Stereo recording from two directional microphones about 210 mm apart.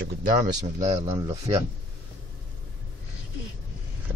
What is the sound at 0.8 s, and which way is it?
Speech, 30° right (ahead or behind).